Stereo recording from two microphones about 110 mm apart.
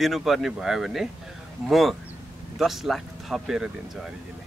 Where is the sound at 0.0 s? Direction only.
Centre (ahead or behind).